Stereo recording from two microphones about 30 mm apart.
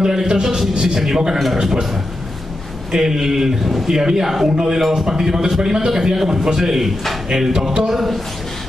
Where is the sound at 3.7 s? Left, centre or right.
Centre.